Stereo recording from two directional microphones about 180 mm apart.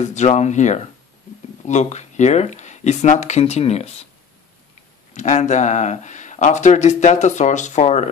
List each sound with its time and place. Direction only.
0.0 s speech: 40° left (ahead or behind)
5.1 s speech: 40° left (ahead or behind)